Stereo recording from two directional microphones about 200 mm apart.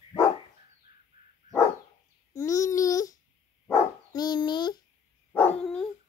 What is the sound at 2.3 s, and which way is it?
Babbling, 15° left (ahead or behind).